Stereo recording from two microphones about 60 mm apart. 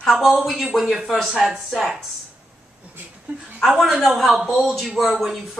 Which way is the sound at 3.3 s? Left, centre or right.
Right.